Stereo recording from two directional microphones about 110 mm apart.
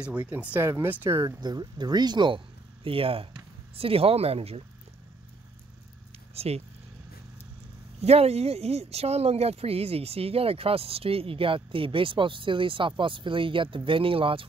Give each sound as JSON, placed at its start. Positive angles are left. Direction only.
{"t": 0.0, "sound": "speech", "side_deg": -10}
{"t": 1.4, "sound": "speech", "side_deg": -40}
{"t": 6.3, "sound": "speech", "side_deg": -70}
{"t": 8.0, "sound": "speech", "side_deg": -70}